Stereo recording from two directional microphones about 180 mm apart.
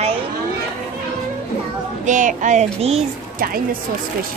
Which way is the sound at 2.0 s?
45° right (ahead or behind).